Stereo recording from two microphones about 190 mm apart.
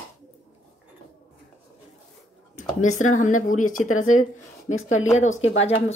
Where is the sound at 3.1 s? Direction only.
40° left (ahead or behind).